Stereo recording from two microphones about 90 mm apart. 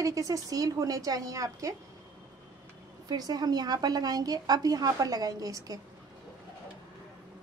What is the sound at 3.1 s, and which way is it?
A woman's voice, 45° right (ahead or behind).